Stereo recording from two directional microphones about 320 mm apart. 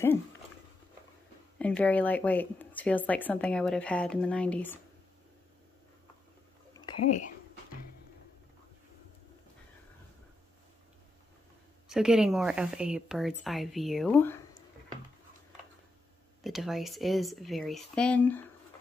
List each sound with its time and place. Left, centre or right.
1.6 s a woman's voice: centre
6.8 s a sound: centre
11.9 s a woman's voice: centre
16.4 s a woman's voice: centre